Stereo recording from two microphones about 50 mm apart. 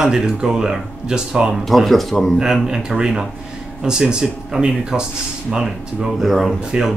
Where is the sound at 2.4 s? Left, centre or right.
Centre.